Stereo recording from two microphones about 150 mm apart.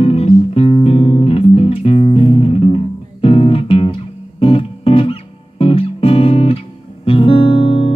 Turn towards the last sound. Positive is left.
turn(degrees=35)  # may be behind; listen again after turning